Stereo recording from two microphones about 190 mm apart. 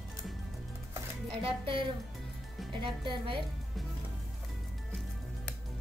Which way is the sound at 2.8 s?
25° right (ahead or behind).